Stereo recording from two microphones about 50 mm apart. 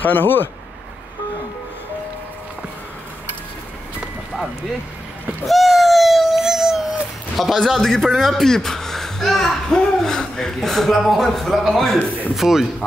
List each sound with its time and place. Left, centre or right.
0.0 s a man's voice: left
5.4 s a sound: centre
7.3 s a man's voice: centre